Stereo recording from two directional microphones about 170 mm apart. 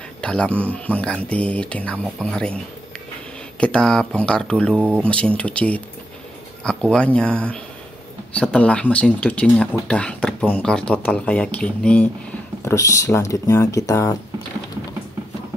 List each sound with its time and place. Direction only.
0.2 s speech: 5° left (ahead or behind)
3.5 s speech: 5° left (ahead or behind)
4.7 s speech: 10° right (ahead or behind)
5.0 s speech: 5° left (ahead or behind)
12.6 s speech: 20° left (ahead or behind)